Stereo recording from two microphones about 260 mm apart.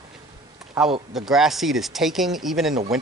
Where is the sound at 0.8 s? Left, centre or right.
Centre.